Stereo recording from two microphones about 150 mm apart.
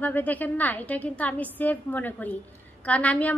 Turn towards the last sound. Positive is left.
turn(degrees=10)  # may be behind; listen again after turning